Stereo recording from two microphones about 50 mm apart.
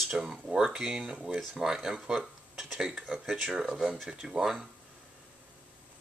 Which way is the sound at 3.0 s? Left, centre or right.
Centre.